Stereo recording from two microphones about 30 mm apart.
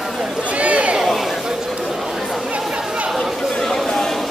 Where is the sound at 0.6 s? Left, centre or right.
Right.